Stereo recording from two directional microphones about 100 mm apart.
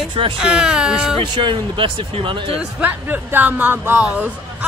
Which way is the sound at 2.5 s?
5° right (ahead or behind).